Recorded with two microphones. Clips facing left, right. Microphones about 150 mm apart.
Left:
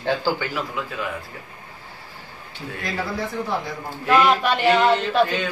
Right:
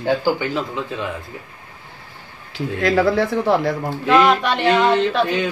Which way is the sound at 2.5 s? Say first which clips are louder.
Right 12 dB; 90° right.